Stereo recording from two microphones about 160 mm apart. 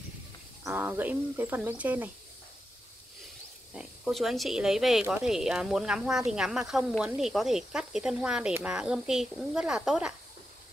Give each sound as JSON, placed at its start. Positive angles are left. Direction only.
{"t": 0.7, "sound": "speech", "side_deg": -10}
{"t": 3.7, "sound": "speech", "side_deg": 0}